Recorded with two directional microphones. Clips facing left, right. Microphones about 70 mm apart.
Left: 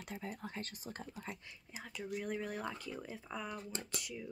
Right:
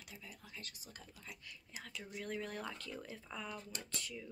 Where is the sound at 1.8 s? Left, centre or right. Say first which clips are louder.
Left 6 dB; centre.